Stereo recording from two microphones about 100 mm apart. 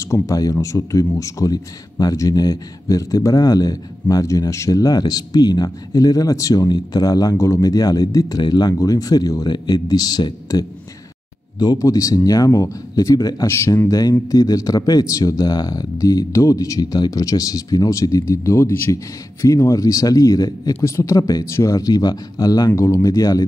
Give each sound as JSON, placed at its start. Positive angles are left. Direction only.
{"t": 0.0, "sound": "speech", "side_deg": 30}